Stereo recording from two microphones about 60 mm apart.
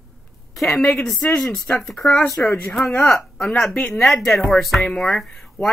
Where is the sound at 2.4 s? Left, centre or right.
Left.